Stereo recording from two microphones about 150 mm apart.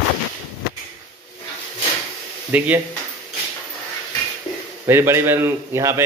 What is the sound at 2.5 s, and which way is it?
Speech, 10° right (ahead or behind).